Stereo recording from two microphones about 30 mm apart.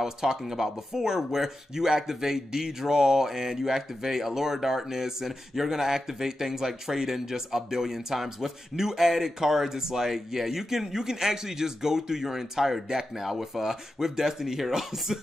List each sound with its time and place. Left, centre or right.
0.0 s speech: centre